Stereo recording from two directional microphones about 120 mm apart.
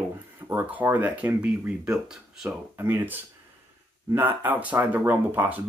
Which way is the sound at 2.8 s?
20° right (ahead or behind).